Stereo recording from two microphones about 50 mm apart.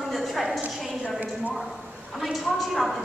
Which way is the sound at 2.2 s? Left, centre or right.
Centre.